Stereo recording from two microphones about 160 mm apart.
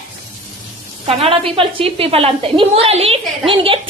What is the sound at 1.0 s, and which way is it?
A woman's voice, 35° right (ahead or behind).